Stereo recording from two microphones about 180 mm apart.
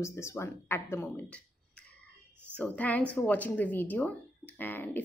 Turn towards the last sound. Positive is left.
turn(degrees=10)  # may be behind; listen again after turning